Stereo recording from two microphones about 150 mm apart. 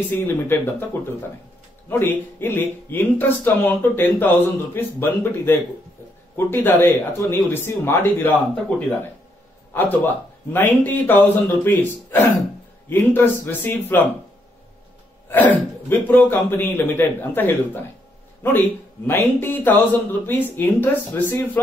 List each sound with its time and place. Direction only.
0.1 s speech: 15° left (ahead or behind)
15.9 s speech: 15° left (ahead or behind)